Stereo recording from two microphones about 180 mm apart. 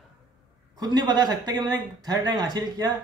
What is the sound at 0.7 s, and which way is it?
A man's voice, 25° right (ahead or behind).